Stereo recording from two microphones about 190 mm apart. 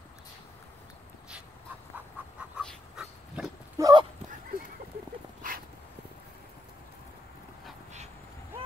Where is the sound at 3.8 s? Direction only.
20° right (ahead or behind).